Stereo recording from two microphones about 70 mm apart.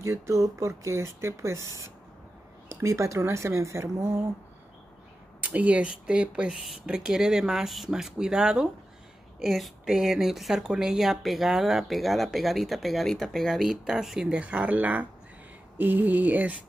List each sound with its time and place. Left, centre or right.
0.0 s speech: right
4.0 s speech: right
5.4 s speech: right
6.5 s speech: centre; by 15.0 s right
15.8 s a sound: right